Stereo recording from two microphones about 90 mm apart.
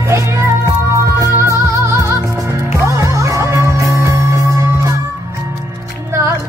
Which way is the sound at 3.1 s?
35° right (ahead or behind).